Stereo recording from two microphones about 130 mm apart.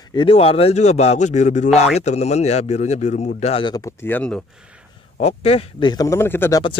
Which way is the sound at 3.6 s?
30° left (ahead or behind).